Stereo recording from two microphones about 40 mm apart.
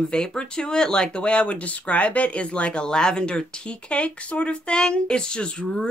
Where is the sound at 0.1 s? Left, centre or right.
Centre.